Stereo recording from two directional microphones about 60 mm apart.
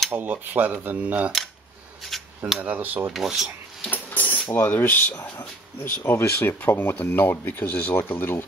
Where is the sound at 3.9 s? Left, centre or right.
Left.